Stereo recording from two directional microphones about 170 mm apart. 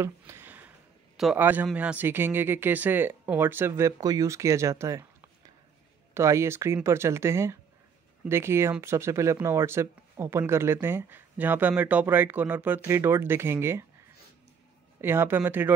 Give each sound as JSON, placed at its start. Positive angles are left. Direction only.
{"t": 0.0, "sound": "a sound", "side_deg": -15}
{"t": 1.3, "sound": "speech", "side_deg": -10}
{"t": 6.1, "sound": "speech", "side_deg": -15}
{"t": 15.0, "sound": "speech", "side_deg": -15}